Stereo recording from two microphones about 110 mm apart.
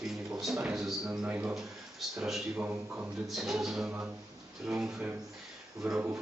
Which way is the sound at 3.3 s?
5° right (ahead or behind).